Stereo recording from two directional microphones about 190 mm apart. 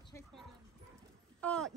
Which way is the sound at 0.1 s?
15° left (ahead or behind).